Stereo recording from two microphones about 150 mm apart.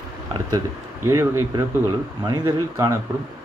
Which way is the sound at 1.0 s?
20° right (ahead or behind).